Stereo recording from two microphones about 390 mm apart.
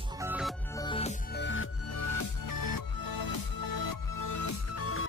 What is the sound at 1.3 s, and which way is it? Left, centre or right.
Music, left.